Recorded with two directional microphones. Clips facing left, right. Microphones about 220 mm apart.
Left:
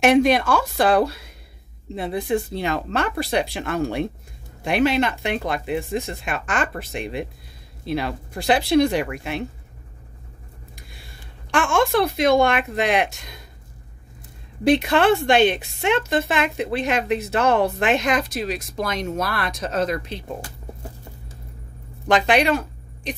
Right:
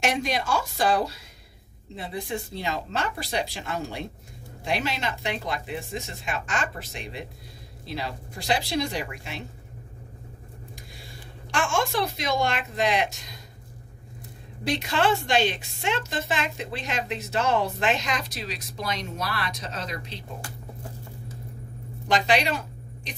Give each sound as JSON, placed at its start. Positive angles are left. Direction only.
{"t": 0.0, "sound": "a woman's voice", "side_deg": 60}
{"t": 11.5, "sound": "a woman's voice", "side_deg": 55}
{"t": 14.6, "sound": "a woman's voice", "side_deg": 60}
{"t": 22.0, "sound": "speech", "side_deg": 55}